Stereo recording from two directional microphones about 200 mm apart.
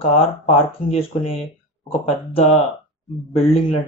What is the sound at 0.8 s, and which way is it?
Speech, 30° left (ahead or behind).